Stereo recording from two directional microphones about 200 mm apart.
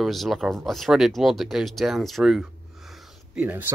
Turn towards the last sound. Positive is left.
turn(degrees=-10)  # may be behind; listen again after turning